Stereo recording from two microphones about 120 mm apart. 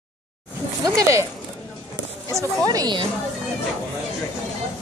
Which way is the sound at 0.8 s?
25° right (ahead or behind).